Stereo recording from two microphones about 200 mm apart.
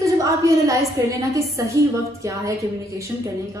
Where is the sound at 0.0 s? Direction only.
15° right (ahead or behind).